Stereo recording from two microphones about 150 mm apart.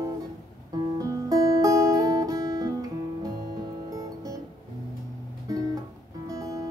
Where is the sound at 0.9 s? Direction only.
25° right (ahead or behind).